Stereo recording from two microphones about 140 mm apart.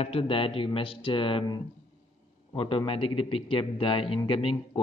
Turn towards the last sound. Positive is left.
turn(degrees=40)  # may be behind; listen again after turning